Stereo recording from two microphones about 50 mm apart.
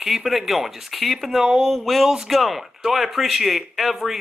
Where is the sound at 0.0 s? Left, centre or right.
Centre.